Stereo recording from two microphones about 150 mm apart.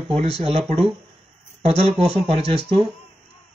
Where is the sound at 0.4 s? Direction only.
45° right (ahead or behind).